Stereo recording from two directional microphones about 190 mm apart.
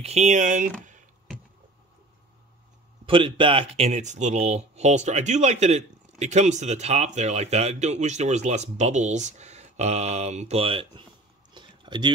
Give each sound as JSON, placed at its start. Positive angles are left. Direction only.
{"t": 0.0, "sound": "speech", "side_deg": -35}
{"t": 3.1, "sound": "speech", "side_deg": -25}
{"t": 11.5, "sound": "a sound", "side_deg": -25}